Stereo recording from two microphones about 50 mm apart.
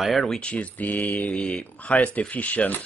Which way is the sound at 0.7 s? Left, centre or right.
Left.